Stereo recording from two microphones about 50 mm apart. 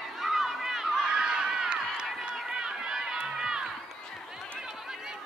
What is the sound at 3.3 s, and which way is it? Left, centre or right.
Crowd, centre.